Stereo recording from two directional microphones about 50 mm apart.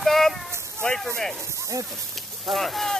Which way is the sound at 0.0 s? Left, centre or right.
Centre.